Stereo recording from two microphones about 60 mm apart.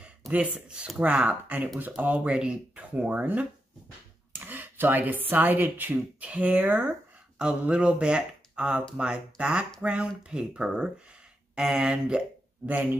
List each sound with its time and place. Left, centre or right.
0.3 s speech: right
7.3 s speech: centre